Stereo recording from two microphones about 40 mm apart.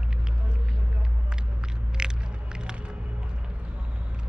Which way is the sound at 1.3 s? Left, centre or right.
Centre.